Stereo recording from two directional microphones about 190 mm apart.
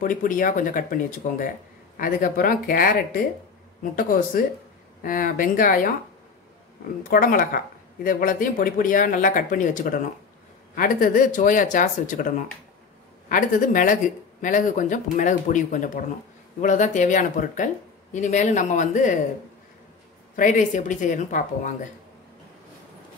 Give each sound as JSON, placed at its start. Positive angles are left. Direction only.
{"t": 0.0, "sound": "speech", "side_deg": 45}
{"t": 7.1, "sound": "speech", "side_deg": 50}
{"t": 20.3, "sound": "speech", "side_deg": 45}